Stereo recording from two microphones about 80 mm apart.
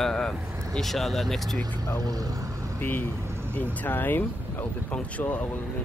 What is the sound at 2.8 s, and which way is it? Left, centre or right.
Speech, left.